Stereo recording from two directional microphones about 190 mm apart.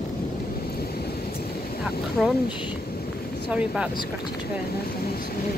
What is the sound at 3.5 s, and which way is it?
Speech, 5° right (ahead or behind).